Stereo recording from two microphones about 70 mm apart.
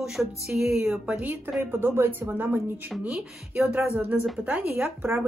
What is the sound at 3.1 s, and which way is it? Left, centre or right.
Speech, centre.